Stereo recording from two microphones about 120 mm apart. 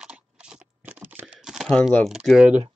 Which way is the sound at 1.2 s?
5° right (ahead or behind).